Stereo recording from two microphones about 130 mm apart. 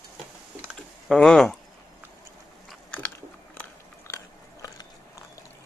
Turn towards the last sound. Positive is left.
turn(degrees=25)  # may be behind; listen again after turning